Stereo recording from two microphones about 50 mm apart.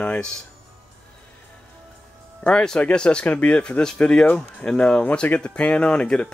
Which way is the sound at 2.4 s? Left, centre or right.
Centre.